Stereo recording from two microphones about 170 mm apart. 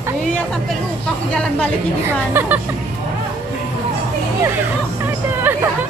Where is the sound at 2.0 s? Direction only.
15° right (ahead or behind).